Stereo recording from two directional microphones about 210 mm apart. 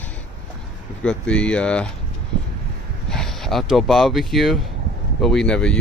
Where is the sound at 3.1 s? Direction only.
Centre (ahead or behind).